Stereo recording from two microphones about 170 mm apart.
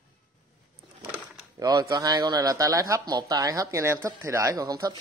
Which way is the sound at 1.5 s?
20° right (ahead or behind).